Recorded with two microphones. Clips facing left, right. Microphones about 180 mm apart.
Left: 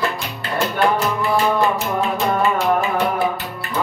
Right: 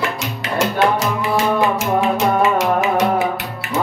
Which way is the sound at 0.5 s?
90° right.